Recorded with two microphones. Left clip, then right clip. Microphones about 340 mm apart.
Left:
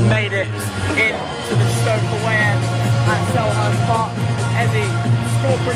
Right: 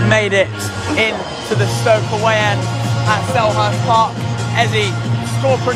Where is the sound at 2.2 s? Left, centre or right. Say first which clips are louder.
Right 3 dB; centre.